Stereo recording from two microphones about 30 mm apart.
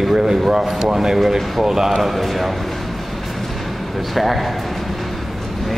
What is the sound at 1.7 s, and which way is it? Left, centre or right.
Speech, centre.